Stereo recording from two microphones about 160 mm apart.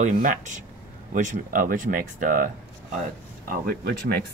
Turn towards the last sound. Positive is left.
turn(degrees=-85)